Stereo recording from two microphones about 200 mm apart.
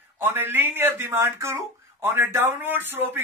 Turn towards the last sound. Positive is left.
turn(degrees=-10)  # may be behind; listen again after turning